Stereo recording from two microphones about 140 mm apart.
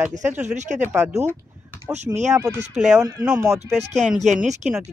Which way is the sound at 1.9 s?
55° right (ahead or behind).